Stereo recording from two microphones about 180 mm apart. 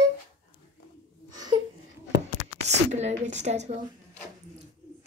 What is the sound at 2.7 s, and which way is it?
A woman's voice, 40° right (ahead or behind).